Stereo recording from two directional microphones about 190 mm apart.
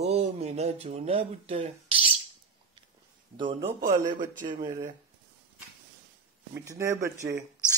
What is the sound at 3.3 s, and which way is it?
Mantra, 25° right (ahead or behind).